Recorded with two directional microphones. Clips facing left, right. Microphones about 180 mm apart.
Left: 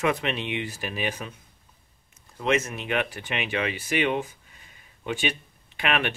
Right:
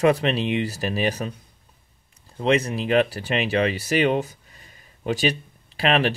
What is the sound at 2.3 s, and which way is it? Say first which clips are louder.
Speech: right 4 dB; 35° right (ahead or behind).